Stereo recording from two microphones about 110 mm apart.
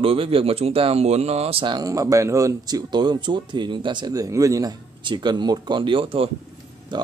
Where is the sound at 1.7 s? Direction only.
30° right (ahead or behind).